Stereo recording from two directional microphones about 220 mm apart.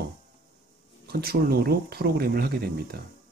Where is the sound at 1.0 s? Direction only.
45° right (ahead or behind).